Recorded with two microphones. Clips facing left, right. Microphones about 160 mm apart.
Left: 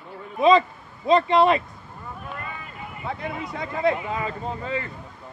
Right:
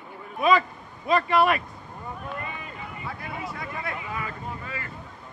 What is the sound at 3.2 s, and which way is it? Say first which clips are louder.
Speech: left 4 dB; 20° left (ahead or behind).